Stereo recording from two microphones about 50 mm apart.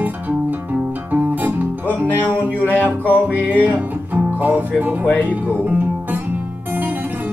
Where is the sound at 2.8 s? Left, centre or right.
Right.